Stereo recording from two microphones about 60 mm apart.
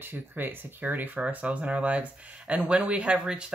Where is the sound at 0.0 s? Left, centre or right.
Right.